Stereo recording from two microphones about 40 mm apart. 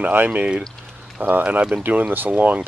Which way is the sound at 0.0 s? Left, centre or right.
Right.